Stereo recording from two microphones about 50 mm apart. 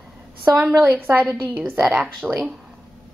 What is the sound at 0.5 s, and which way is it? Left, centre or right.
Speech, right.